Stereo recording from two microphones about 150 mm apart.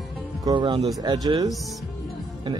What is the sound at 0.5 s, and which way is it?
Speech, 30° right (ahead or behind).